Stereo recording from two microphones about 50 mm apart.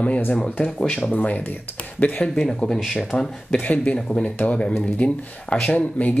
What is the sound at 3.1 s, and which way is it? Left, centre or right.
Speech, left.